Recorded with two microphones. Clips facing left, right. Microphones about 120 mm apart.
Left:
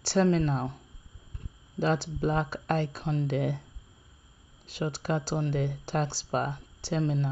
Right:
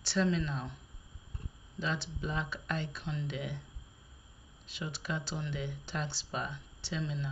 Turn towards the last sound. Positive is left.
turn(degrees=50)  # may be behind; listen again after turning